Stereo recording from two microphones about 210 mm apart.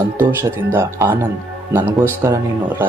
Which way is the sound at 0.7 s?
10° right (ahead or behind).